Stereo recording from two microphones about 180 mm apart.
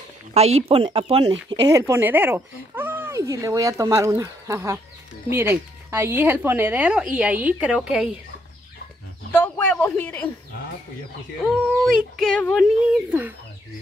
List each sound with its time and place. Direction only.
0.3 s speech: 35° right (ahead or behind)
1.5 s speech: 20° right (ahead or behind); by 8.1 s 5° right (ahead or behind)
9.3 s speech: 10° left (ahead or behind)
11.8 s speech: centre (ahead or behind)
12.8 s speech: 10° right (ahead or behind)